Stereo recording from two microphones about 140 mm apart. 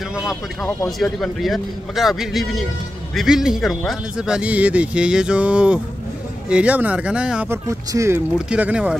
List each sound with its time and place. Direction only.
0.7 s a man's voice: 5° left (ahead or behind)
7.6 s speech: 20° right (ahead or behind)
8.5 s speech: 10° right (ahead or behind)